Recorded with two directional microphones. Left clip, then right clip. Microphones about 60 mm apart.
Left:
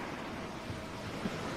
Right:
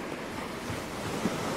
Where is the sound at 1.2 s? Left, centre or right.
Right.